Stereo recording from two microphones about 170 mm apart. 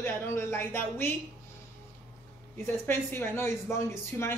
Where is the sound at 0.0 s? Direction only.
10° left (ahead or behind).